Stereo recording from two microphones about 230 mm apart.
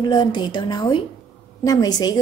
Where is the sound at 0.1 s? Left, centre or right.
Centre.